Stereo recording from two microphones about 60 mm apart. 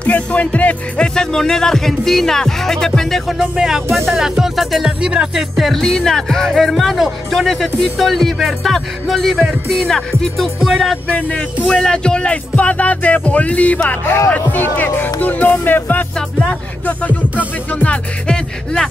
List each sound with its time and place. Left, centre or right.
0.0 s music: left; by 2.9 s centre
3.3 s music: centre
4.1 s speech: centre
5.0 s music: centre
5.6 s speech: centre
11.1 s music: left
11.6 s music: centre; by 16.1 s left
16.2 s music: centre
16.8 s music: left
17.8 s music: centre